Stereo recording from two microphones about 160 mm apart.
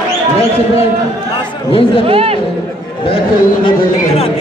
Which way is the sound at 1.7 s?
35° left (ahead or behind).